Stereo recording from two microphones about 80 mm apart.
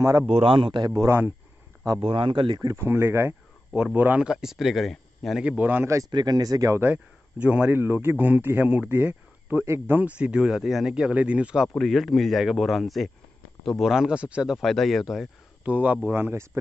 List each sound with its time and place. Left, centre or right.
0.5 s speech: right
1.0 s speech: right
2.0 s speech: right
2.8 s speech: right
3.7 s speech: centre
4.3 s speech: centre
5.6 s speech: right
6.0 s speech: right
6.8 s speech: centre
7.7 s speech: right
10.0 s speech: centre
11.8 s speech: centre
14.6 s speech: centre
15.6 s speech: centre